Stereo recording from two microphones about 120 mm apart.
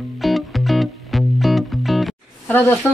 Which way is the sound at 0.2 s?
Centre (ahead or behind).